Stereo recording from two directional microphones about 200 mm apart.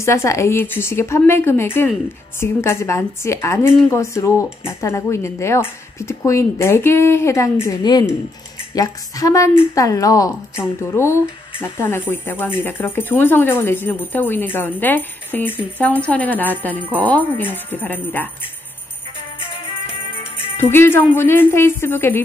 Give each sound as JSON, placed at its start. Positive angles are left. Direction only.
{"t": 0.0, "sound": "speech", "side_deg": 15}
{"t": 20.7, "sound": "speech", "side_deg": 10}